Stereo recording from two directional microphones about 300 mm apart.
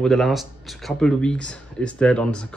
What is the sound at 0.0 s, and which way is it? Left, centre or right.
Speech, centre.